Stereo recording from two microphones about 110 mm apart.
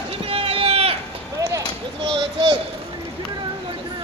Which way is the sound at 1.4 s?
30° right (ahead or behind).